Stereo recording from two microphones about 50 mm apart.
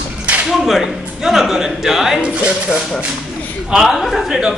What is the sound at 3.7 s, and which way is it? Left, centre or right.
Speech, centre.